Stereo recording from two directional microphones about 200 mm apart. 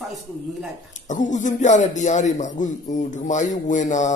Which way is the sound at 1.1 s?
40° left (ahead or behind).